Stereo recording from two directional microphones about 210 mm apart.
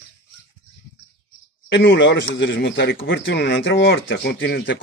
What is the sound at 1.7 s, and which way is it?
A man's voice, 60° left (ahead or behind).